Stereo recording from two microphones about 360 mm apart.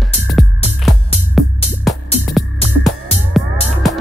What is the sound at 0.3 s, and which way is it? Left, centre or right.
Music, centre.